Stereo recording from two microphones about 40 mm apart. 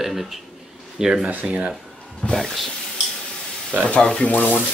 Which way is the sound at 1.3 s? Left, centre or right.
Right.